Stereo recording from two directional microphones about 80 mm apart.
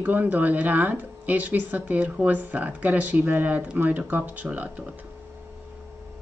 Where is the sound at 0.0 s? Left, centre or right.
Right.